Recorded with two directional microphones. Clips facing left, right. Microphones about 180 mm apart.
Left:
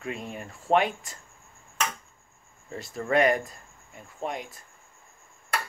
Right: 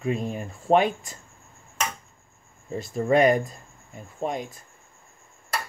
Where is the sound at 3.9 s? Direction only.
30° right (ahead or behind).